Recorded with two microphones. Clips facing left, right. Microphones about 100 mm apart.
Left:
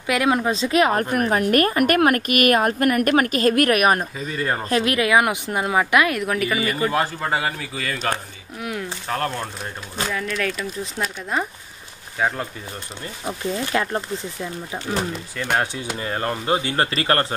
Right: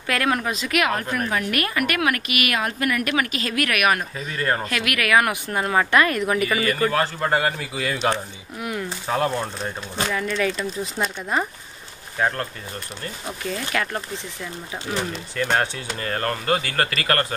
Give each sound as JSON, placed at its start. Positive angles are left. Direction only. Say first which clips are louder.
{"t": 0.0, "sound": "speech", "louder": "left 3 dB", "side_deg": 15}
{"t": 0.5, "sound": "a woman's voice", "louder": "left 4 dB", "side_deg": 30}
{"t": 4.2, "sound": "speech", "louder": "even", "side_deg": 5}
{"t": 4.6, "sound": "speech", "louder": "left 4 dB", "side_deg": 30}
{"t": 6.6, "sound": "speech", "louder": "even", "side_deg": 15}
{"t": 7.2, "sound": "speech", "louder": "right 2 dB", "side_deg": 0}
{"t": 13.4, "sound": "speech", "louder": "left 3 dB", "side_deg": 25}
{"t": 15.5, "sound": "speech", "louder": "left 2 dB", "side_deg": 10}